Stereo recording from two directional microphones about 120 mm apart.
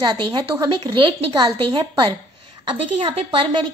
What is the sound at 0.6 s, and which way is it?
A woman's voice, 40° right (ahead or behind).